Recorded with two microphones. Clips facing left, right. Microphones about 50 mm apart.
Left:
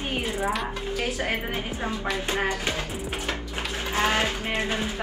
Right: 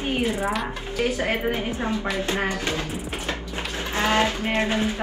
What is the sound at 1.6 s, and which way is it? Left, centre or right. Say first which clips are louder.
Speech: right 3 dB; right.